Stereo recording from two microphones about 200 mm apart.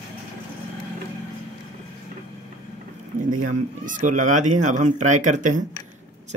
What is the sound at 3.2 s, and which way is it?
Speech, 40° right (ahead or behind).